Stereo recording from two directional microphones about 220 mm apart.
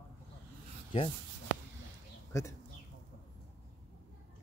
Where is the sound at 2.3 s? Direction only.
15° left (ahead or behind).